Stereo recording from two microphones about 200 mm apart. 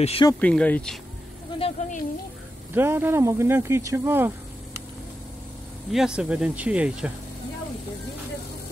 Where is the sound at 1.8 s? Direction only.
35° left (ahead or behind).